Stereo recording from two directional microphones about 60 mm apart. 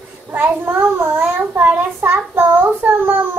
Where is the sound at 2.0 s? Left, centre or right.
Right.